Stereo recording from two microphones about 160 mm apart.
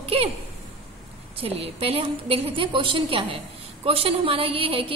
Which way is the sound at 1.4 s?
40° right (ahead or behind).